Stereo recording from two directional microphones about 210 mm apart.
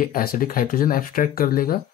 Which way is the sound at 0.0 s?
45° left (ahead or behind).